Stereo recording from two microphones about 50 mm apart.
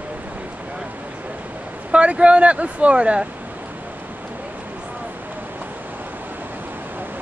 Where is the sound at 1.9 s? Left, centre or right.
Right.